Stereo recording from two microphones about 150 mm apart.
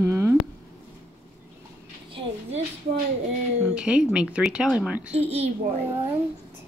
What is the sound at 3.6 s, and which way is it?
Speech, 5° right (ahead or behind).